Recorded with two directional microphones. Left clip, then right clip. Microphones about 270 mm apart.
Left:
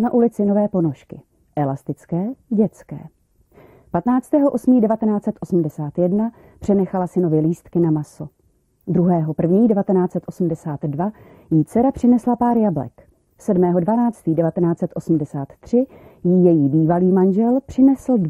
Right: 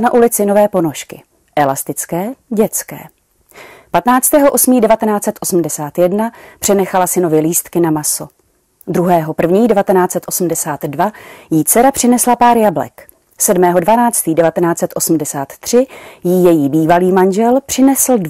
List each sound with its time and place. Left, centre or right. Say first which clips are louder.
0.2 s a woman's voice: right 8 dB; centre
12.2 s speech: right 9 dB; right
12.4 s a woman's voice: right 9 dB; centre
16.3 s speech: right 5 dB; right
16.8 s a woman's voice: right 7 dB; centre